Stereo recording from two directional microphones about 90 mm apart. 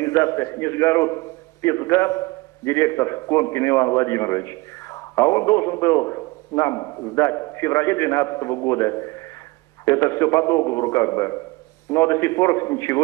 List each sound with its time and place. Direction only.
0.0 s a man's voice: 35° left (ahead or behind)